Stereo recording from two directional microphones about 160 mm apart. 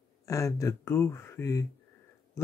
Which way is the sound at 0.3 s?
20° left (ahead or behind).